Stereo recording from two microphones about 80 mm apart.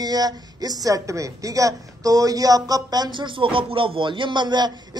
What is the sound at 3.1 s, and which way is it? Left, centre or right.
Music, right.